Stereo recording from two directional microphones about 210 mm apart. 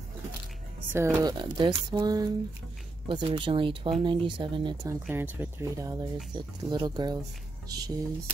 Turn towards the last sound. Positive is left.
turn(degrees=-20)  # may be behind; listen again after turning